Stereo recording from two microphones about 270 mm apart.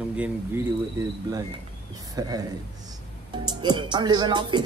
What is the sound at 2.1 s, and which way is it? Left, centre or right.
Music, centre.